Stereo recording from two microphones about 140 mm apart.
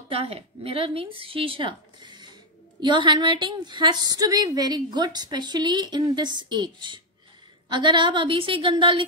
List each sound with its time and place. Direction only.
0.1 s a woman's voice: 45° right (ahead or behind)